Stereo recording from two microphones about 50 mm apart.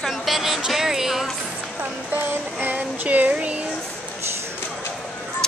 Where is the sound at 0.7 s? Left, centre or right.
Centre.